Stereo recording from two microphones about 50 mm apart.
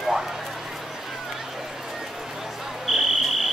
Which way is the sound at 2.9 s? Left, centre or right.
Centre.